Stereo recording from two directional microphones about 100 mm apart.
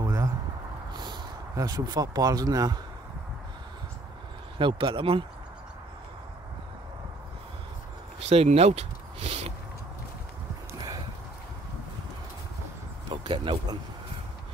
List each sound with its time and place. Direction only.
0.0 s a sound: 30° right (ahead or behind)
0.9 s speech: 45° right (ahead or behind)
4.6 s speech: 55° right (ahead or behind)
8.3 s speech: 90° right
13.1 s speech: 55° right (ahead or behind)